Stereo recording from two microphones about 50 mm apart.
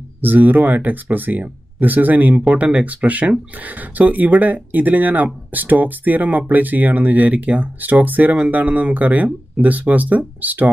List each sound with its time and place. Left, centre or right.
0.2 s speech: right